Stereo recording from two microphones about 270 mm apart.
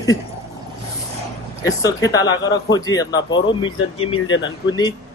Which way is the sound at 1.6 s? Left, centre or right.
Centre.